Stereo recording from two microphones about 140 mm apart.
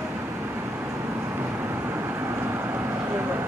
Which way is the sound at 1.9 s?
15° right (ahead or behind).